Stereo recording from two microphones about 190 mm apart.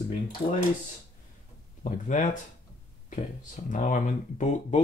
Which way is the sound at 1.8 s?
45° left (ahead or behind).